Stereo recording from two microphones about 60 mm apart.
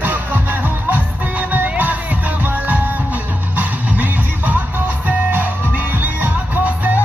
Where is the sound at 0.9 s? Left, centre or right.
Right.